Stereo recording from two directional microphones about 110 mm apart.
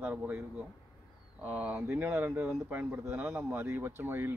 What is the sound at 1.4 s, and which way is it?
A man's voice, 10° right (ahead or behind).